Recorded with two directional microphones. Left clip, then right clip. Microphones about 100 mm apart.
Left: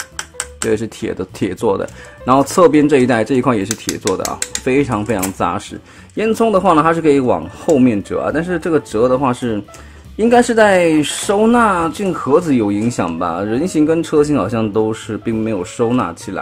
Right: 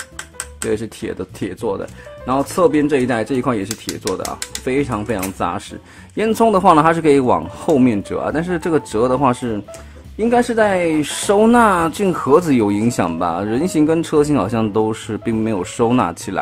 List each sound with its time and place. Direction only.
0.2 s music: 30° left (ahead or behind)
1.4 s speech: 50° left (ahead or behind); by 5.6 s 25° left (ahead or behind)
6.1 s a man's voice: centre (ahead or behind)
10.1 s speech: 20° left (ahead or behind)
11.1 s speech: centre (ahead or behind); by 16.3 s 20° right (ahead or behind)